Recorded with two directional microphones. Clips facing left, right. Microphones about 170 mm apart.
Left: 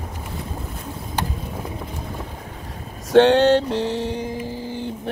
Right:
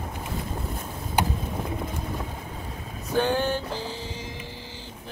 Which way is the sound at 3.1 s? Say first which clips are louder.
Left 11 dB; 85° left.